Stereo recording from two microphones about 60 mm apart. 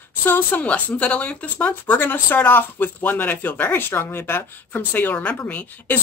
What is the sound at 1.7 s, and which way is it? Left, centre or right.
Speech, left.